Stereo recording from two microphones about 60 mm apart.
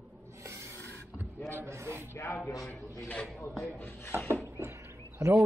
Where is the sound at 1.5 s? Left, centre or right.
Right.